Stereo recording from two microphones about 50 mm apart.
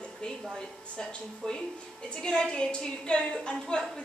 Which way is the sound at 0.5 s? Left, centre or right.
Centre.